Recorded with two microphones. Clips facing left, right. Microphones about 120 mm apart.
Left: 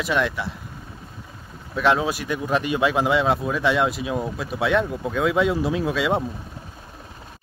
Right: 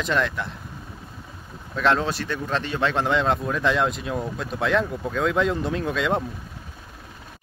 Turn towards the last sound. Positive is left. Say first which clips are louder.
# left 2 dB
turn(degrees=5)  # may be behind; listen again after turning